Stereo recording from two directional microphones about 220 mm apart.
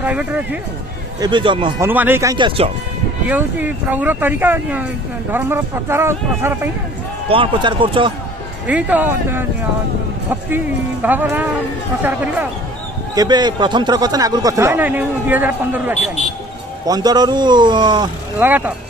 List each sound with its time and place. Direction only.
0.0 s speech: 5° right (ahead or behind)
1.2 s speech: 20° right (ahead or behind)
1.9 s speech: 10° right (ahead or behind)
2.3 s speech: 25° right (ahead or behind)
3.3 s speech: 5° right (ahead or behind)
7.2 s speech: 25° right (ahead or behind)
8.6 s speech: 5° right (ahead or behind)
10.5 s speech: 10° right (ahead or behind)
13.1 s speech: 20° right (ahead or behind)